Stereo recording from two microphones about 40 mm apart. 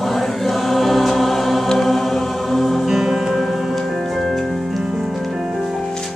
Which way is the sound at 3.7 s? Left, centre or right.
Centre.